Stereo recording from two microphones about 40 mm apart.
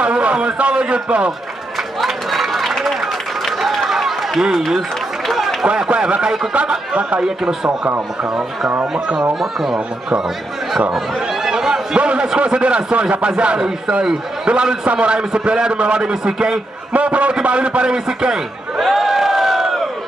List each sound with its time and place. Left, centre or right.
0.0 s a sound: right
2.0 s a sound: centre
5.3 s run: centre
5.7 s a man's voice: right
7.0 s a man's voice: right
8.9 s a man's voice: right
9.3 s speech: centre
10.9 s a sound: centre
12.0 s a sound: right
12.4 s a man's voice: right
16.9 s a man's voice: right; by 18.4 s centre
18.8 s crowd: centre